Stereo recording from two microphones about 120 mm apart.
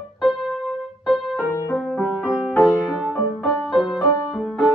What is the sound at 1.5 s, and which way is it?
Music, 20° left (ahead or behind).